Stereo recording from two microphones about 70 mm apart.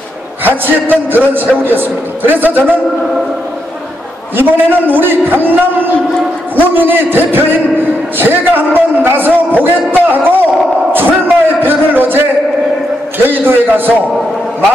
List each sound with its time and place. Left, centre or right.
0.4 s a man's voice: right
4.4 s a man's voice: right
10.9 s a sound: right
13.2 s a man's voice: right